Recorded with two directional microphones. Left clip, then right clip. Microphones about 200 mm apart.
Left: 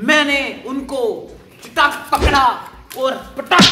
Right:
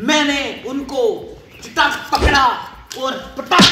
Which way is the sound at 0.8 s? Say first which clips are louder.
Right 2 dB; 30° left (ahead or behind).